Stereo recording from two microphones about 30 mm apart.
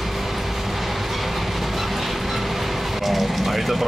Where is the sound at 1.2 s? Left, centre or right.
Centre.